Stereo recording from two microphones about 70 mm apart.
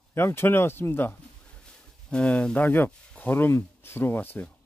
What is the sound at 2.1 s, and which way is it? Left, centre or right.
Speech, centre.